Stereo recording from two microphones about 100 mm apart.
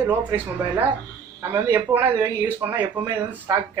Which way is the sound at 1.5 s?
25° right (ahead or behind).